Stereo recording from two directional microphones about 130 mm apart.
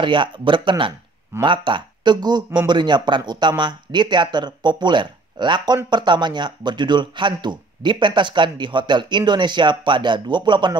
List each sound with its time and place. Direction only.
0.0 s speech: 40° right (ahead or behind)